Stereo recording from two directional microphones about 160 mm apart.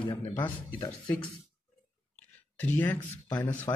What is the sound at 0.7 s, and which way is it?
Speech, 25° left (ahead or behind).